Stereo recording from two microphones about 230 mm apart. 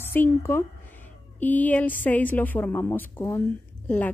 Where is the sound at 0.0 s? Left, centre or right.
Centre.